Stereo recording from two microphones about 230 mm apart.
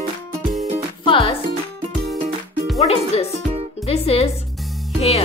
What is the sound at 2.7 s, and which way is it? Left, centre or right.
Speech, left.